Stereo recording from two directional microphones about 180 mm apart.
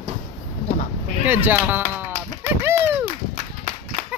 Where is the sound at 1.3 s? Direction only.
10° right (ahead or behind).